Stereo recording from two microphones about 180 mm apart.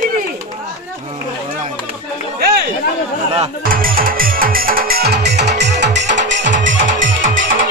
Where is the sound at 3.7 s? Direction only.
55° right (ahead or behind); by 6.2 s 75° right (ahead or behind).